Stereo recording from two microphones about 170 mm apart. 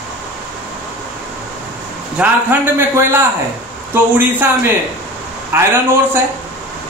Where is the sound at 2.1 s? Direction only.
10° right (ahead or behind).